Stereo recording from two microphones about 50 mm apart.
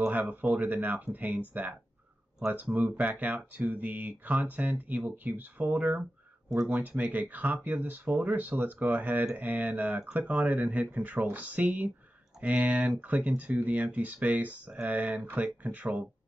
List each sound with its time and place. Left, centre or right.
0.6 s speech: right